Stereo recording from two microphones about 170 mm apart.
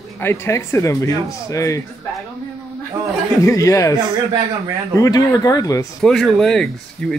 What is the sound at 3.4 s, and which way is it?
Speech, 20° left (ahead or behind).